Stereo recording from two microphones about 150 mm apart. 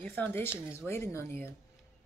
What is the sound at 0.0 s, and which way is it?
Speech, 10° left (ahead or behind).